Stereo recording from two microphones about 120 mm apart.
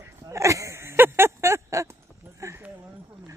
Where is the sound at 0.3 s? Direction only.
25° right (ahead or behind).